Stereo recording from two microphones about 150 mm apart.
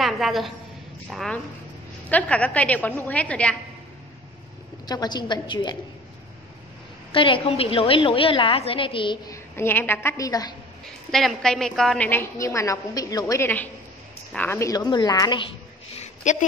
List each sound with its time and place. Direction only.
0.0 s a sound: centre (ahead or behind)
1.1 s a woman's voice: centre (ahead or behind)
4.8 s a woman's voice: 30° left (ahead or behind)
7.1 s a woman's voice: 35° left (ahead or behind)
9.3 s a woman's voice: 15° left (ahead or behind)
11.1 s a woman's voice: centre (ahead or behind)
12.1 s a woman's voice: 20° left (ahead or behind)
16.0 s a sound: 55° left (ahead or behind)